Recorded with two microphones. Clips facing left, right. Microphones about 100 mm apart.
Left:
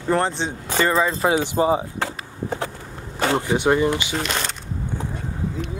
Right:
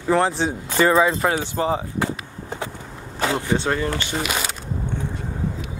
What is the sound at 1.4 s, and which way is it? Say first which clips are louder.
Speech: left 3 dB; 15° left (ahead or behind).